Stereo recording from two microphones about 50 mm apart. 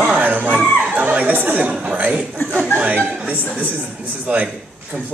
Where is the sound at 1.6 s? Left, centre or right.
Right.